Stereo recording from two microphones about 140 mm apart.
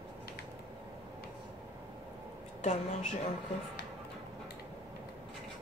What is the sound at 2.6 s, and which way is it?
Speech, 55° left (ahead or behind).